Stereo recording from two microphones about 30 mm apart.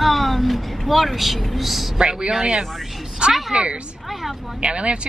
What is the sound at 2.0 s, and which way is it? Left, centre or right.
Speech, right.